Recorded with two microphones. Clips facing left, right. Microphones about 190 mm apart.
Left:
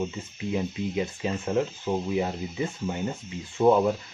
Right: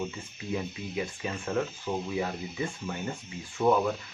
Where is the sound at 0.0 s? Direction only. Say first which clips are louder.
Left 5 dB; 20° left (ahead or behind).